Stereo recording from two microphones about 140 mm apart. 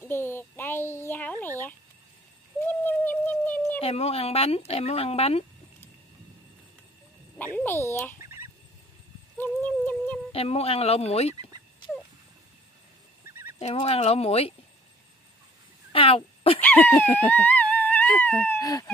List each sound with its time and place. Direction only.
0.0 s a child's voice: 15° left (ahead or behind)
2.6 s a sound: 15° left (ahead or behind)
3.8 s speech: 45° left (ahead or behind)
7.3 s a child's voice: 15° left (ahead or behind)
8.2 s fowl: 20° right (ahead or behind)
9.4 s music: 10° left (ahead or behind)
10.3 s speech: 45° left (ahead or behind)
13.3 s fowl: 15° right (ahead or behind)
13.6 s speech: 45° left (ahead or behind)
15.9 s a sound: 40° left (ahead or behind)
16.5 s speech: 15° left (ahead or behind)
18.6 s chicken: 25° left (ahead or behind)